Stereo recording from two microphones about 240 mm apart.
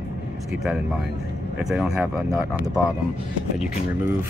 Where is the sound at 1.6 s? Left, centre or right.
Centre.